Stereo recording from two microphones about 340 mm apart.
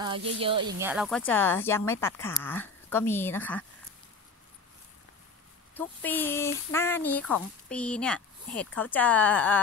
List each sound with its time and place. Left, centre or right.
0.0 s speech: centre
0.7 s speech: centre
5.8 s speech: centre